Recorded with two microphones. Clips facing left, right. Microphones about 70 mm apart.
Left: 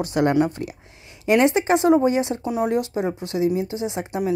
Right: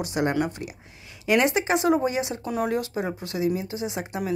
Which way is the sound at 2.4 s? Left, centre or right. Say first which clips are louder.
Left 4 dB; centre.